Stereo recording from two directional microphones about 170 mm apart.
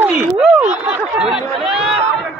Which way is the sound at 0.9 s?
5° right (ahead or behind).